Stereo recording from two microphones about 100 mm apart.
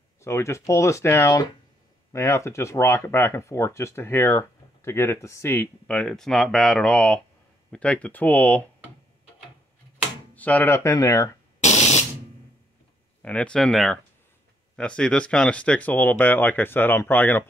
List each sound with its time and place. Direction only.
0.2 s speech: 30° left (ahead or behind)
5.9 s speech: 10° left (ahead or behind)
10.3 s a sound: 15° left (ahead or behind)
10.7 s speech: 30° left (ahead or behind)
13.2 s speech: 15° left (ahead or behind)